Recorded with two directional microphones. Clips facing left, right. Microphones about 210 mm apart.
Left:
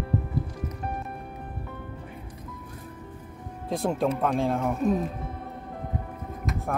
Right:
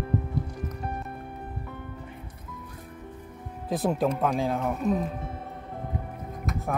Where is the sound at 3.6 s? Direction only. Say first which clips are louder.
Even; centre (ahead or behind).